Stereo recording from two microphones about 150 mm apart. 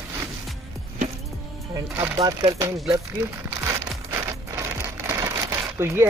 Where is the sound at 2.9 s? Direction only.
15° right (ahead or behind).